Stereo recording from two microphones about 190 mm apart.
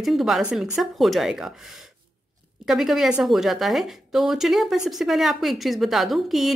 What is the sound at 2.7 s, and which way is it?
A woman's voice, centre (ahead or behind).